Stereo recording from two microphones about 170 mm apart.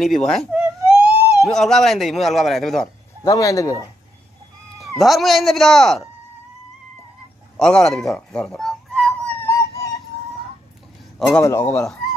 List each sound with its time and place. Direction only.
0.3 s a sound: centre (ahead or behind)
1.4 s speech: centre (ahead or behind)
3.3 s speech: 20° left (ahead or behind)
4.7 s speech: centre (ahead or behind)
7.5 s a sound: centre (ahead or behind); by 10.0 s 20° left (ahead or behind)
11.1 s speech: centre (ahead or behind)
11.4 s speech: 15° left (ahead or behind)